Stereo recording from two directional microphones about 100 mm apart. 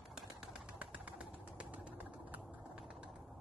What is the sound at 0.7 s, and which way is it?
Bird, 15° right (ahead or behind).